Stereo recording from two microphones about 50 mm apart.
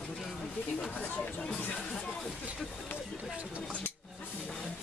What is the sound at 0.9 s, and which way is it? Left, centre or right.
Speech, left.